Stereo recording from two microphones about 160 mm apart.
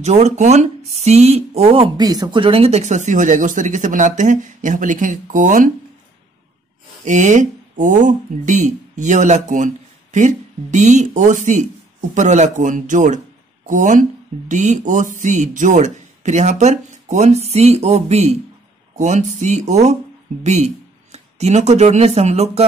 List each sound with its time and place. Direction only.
0.0 s speech: 45° right (ahead or behind)
7.1 s speech: 50° right (ahead or behind)